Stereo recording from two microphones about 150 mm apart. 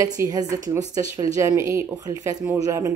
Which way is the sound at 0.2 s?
25° right (ahead or behind).